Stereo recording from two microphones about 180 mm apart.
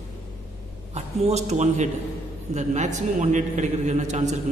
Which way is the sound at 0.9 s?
35° right (ahead or behind).